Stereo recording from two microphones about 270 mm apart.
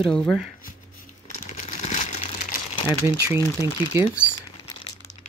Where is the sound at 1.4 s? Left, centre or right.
Left.